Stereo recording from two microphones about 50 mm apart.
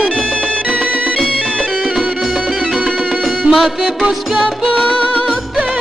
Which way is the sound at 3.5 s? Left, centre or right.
Centre.